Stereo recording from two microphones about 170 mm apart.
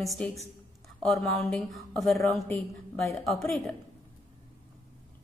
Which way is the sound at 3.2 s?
Centre (ahead or behind).